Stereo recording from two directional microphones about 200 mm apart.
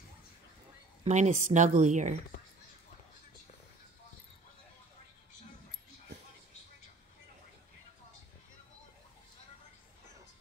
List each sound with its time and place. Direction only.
1.0 s speech: 35° right (ahead or behind)